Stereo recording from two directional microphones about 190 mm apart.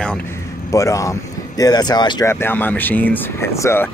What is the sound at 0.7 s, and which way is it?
Speech, 15° left (ahead or behind).